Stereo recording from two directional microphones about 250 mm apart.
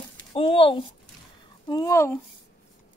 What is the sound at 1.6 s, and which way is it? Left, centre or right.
Speech, centre.